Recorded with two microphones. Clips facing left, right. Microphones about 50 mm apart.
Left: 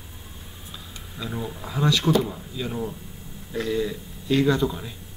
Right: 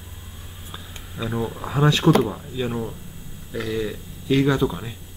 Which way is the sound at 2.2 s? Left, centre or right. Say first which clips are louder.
Right 5 dB; right.